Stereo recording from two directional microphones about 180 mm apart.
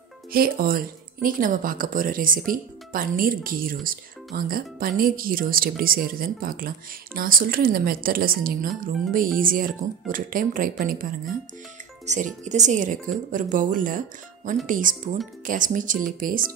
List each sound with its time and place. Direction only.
0.3 s speech: 55° right (ahead or behind)
12.1 s speech: 40° right (ahead or behind)